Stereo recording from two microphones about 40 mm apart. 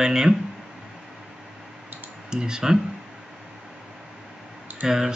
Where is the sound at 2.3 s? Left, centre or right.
Centre.